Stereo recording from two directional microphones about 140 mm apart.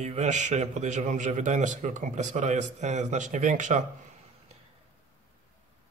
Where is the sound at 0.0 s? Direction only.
55° right (ahead or behind).